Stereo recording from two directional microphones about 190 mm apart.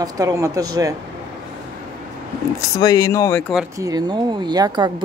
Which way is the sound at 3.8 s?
20° right (ahead or behind).